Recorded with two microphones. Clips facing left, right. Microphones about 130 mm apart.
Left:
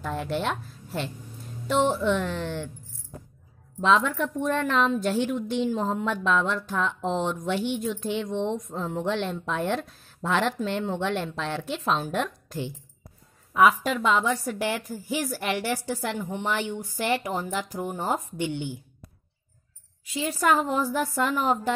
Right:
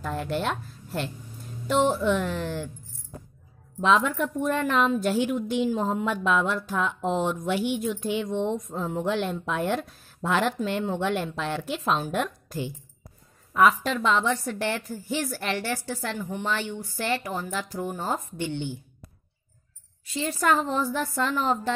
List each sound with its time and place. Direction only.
0.0 s a woman's voice: centre (ahead or behind)
3.8 s a woman's voice: 5° right (ahead or behind); by 18.8 s 15° left (ahead or behind)
20.2 s a woman's voice: 10° left (ahead or behind)